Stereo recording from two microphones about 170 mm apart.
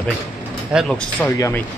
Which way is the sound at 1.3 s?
20° left (ahead or behind).